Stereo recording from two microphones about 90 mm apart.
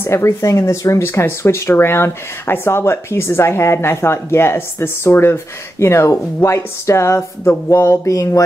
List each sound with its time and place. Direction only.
0.0 s speech: 30° left (ahead or behind)